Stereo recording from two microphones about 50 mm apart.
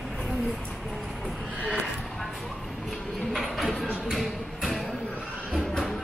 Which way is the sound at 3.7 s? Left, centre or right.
Centre.